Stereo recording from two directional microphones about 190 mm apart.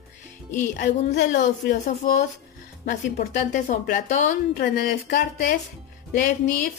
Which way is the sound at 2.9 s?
45° left (ahead or behind).